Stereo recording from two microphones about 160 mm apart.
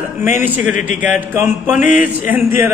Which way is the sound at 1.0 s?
15° right (ahead or behind).